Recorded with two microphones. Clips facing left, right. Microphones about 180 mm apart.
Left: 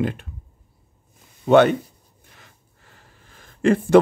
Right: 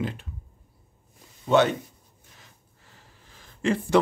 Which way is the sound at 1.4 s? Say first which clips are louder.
Left 6 dB; 55° left (ahead or behind).